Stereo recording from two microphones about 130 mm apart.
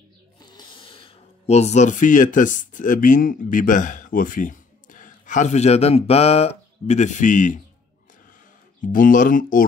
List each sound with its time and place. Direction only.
0.4 s speech: 35° left (ahead or behind); by 7.6 s 80° left
8.8 s speech: 90° left